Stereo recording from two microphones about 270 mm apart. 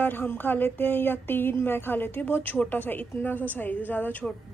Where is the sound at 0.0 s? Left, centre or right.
Centre.